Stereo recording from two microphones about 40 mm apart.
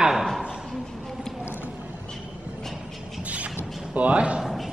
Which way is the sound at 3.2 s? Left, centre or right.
Right.